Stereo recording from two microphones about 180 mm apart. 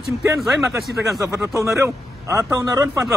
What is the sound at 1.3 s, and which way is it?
Speech, 15° right (ahead or behind).